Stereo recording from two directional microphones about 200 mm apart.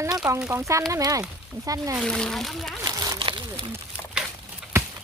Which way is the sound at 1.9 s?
5° left (ahead or behind).